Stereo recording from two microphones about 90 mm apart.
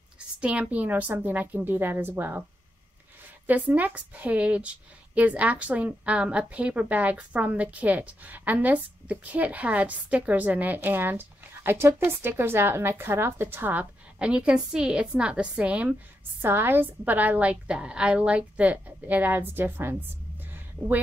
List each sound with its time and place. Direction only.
0.4 s a woman's voice: 15° right (ahead or behind)
3.4 s a woman's voice: 20° right (ahead or behind)
16.3 s a woman's voice: 25° right (ahead or behind)